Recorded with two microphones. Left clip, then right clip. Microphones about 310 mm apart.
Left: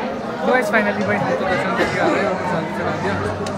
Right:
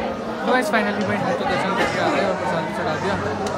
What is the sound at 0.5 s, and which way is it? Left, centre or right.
Speech, centre.